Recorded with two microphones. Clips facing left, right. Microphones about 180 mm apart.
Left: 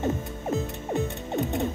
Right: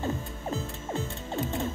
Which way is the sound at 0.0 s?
20° left (ahead or behind).